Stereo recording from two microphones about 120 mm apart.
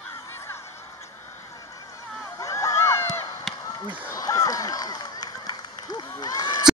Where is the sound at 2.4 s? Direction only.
25° left (ahead or behind).